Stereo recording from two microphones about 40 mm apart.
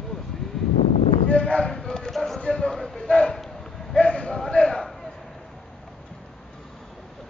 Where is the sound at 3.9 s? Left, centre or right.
Left.